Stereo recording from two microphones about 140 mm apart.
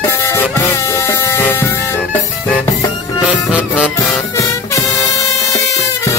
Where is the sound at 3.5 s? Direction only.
10° right (ahead or behind).